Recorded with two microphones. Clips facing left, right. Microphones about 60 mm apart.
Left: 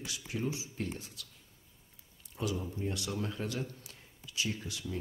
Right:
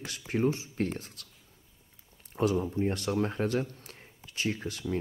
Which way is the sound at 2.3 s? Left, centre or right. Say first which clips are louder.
Right 8 dB; right.